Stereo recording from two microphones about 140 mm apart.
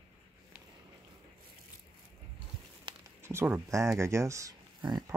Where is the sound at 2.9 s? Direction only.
35° right (ahead or behind).